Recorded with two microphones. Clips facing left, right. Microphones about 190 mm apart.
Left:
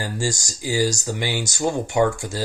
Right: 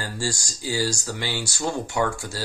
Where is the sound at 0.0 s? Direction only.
15° left (ahead or behind).